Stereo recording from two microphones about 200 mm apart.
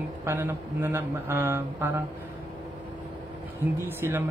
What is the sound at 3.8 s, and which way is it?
Speech, 10° right (ahead or behind).